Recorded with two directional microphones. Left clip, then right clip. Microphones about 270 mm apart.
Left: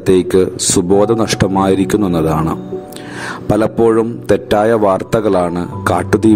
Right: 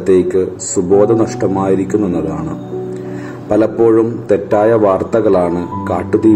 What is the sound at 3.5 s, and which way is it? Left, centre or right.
A man's voice, left.